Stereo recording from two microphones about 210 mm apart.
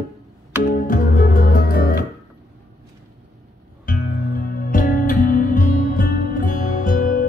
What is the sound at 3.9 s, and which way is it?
Music, 45° left (ahead or behind).